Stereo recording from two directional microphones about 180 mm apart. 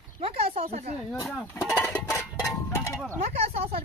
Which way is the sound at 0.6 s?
35° right (ahead or behind).